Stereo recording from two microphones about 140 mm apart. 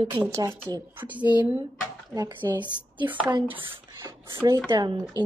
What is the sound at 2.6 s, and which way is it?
Speech, 35° right (ahead or behind).